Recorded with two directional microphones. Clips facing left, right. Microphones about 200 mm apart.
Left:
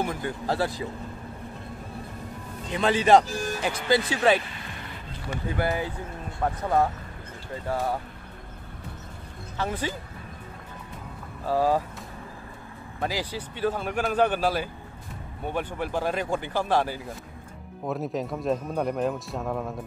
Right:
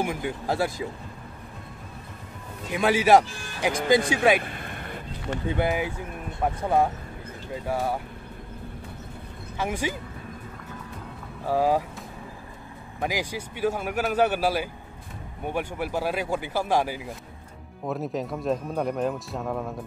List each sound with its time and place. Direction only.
0.0 s speech: 10° right (ahead or behind)
2.7 s speech: 10° right (ahead or behind)
3.3 s music: 40° left (ahead or behind)
4.1 s speech: 10° right (ahead or behind)
4.4 s music: 55° right (ahead or behind)
5.6 s speech: 15° right (ahead or behind)
9.6 s speech: 15° right (ahead or behind)
11.4 s speech: 10° right (ahead or behind)
13.0 s speech: 10° right (ahead or behind)
17.8 s speech: centre (ahead or behind)